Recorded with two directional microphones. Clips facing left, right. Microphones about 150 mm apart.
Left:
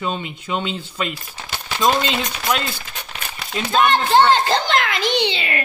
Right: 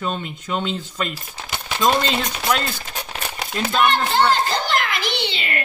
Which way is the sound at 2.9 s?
40° right (ahead or behind).